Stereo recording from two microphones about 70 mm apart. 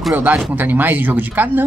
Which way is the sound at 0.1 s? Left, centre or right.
Right.